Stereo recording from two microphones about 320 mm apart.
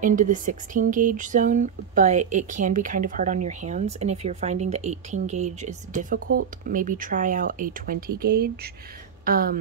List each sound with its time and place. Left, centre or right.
0.0 s speech: right